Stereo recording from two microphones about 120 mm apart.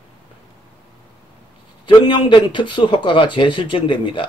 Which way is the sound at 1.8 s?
40° left (ahead or behind).